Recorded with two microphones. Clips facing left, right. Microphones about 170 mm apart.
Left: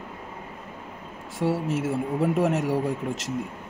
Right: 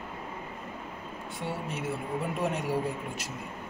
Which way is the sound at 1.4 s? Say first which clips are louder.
Left 11 dB; 90° left.